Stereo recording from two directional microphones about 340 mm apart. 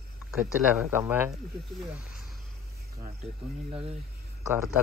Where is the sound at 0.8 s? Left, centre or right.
Centre.